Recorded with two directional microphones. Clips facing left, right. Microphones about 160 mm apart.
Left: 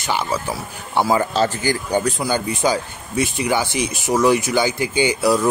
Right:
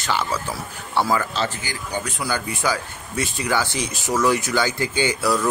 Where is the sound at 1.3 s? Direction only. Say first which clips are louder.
Left 7 dB; 45° left (ahead or behind).